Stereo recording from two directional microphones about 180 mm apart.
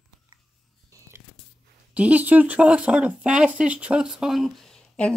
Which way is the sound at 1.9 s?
10° right (ahead or behind).